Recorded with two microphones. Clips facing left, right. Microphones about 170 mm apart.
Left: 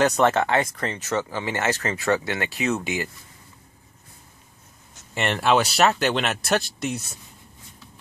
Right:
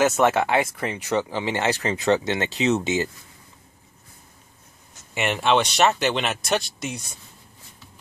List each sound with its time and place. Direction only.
0.0 s speech: 5° right (ahead or behind); by 3.1 s 25° right (ahead or behind)
5.1 s speech: 5° right (ahead or behind)